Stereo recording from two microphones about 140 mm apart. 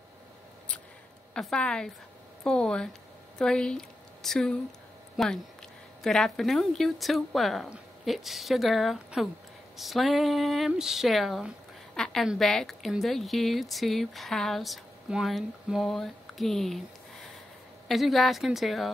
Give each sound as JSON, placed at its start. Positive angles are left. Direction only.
{"t": 1.3, "sound": "speech", "side_deg": 5}